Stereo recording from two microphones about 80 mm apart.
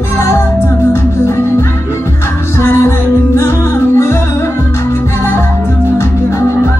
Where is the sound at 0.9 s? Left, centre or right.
Left.